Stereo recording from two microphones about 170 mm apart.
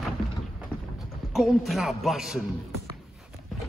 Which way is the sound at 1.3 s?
Centre (ahead or behind).